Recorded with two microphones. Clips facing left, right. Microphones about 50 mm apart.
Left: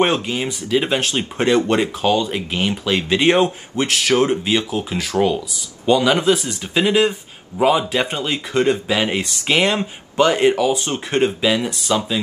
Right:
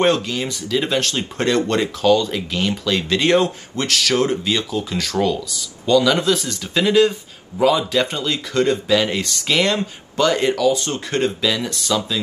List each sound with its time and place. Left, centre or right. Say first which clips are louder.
0.0 s speech: even; left